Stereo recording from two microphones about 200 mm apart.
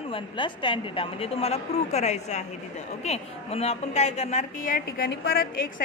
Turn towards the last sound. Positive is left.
turn(degrees=45)  # may be behind; listen again after turning